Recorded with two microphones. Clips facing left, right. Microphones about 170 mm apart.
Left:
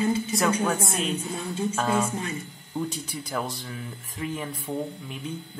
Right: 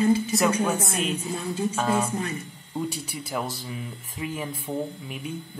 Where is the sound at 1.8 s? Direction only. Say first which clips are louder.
Even; 30° right (ahead or behind).